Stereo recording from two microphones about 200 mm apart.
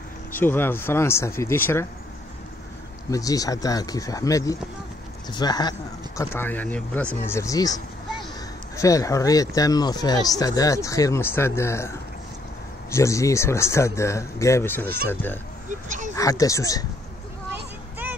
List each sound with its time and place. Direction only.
0.3 s speech: 10° left (ahead or behind)
3.1 s speech: 15° left (ahead or behind)
12.9 s speech: 15° left (ahead or behind)
16.2 s speech: 15° left (ahead or behind)